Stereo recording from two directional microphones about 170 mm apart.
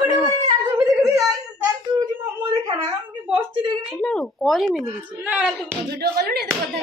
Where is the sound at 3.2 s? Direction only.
30° right (ahead or behind).